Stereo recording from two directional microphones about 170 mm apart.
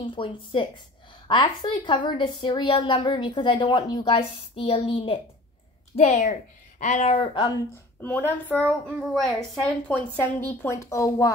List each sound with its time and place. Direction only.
0.0 s a woman's voice: 30° left (ahead or behind)
7.7 s a woman's voice: 10° left (ahead or behind)